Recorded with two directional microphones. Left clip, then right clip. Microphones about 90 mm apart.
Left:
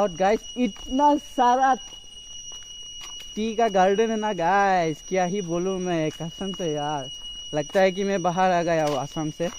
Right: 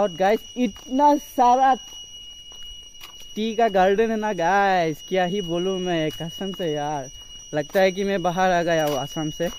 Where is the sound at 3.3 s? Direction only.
25° right (ahead or behind).